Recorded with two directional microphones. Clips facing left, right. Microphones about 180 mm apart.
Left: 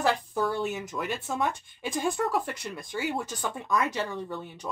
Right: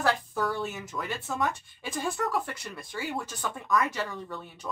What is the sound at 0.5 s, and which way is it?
Speech, 15° left (ahead or behind).